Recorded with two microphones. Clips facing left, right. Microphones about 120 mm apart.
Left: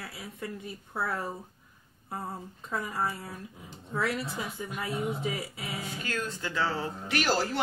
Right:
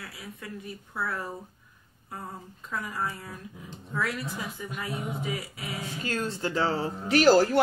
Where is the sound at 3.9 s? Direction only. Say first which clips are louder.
Left 1 dB; 25° left (ahead or behind).